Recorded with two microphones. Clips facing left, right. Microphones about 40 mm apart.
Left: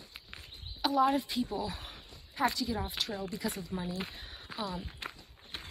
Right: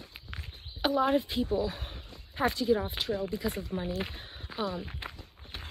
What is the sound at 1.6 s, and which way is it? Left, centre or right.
Speech, right.